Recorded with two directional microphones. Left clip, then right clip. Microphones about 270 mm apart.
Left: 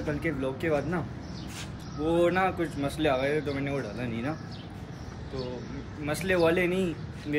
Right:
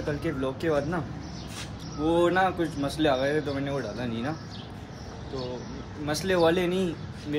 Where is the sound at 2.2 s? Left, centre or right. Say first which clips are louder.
Right 2 dB; centre.